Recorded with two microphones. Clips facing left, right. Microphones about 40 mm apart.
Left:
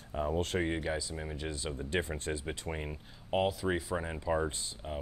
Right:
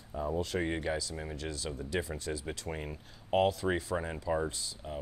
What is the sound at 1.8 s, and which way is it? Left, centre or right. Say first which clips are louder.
Speech: left 2 dB; left.